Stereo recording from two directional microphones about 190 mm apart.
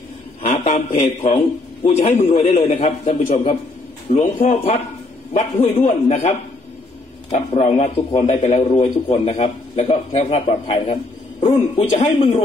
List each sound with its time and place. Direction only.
0.7 s a man's voice: 30° left (ahead or behind)